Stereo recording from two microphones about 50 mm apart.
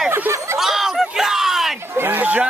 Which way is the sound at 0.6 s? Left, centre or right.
Centre.